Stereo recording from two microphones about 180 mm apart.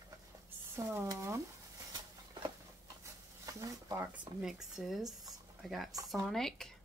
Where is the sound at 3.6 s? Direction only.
10° right (ahead or behind).